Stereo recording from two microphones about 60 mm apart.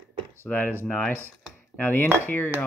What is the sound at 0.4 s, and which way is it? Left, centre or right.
Speech, left.